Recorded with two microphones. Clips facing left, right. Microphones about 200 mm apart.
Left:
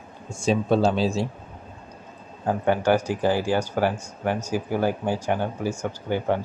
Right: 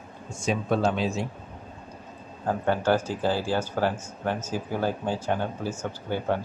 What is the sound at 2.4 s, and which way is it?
Speech, 15° left (ahead or behind).